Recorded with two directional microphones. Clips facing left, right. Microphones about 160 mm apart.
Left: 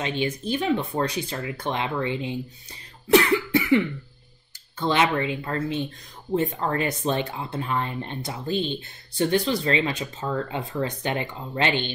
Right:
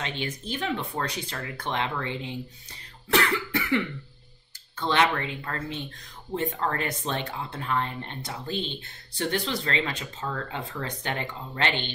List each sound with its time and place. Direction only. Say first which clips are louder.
0.0 s speech: left 6 dB; 15° left (ahead or behind)
3.2 s cough: left 5 dB; 15° left (ahead or behind)
4.7 s speech: left 2 dB; 10° left (ahead or behind)